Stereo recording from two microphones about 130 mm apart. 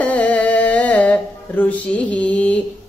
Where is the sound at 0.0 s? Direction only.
10° left (ahead or behind).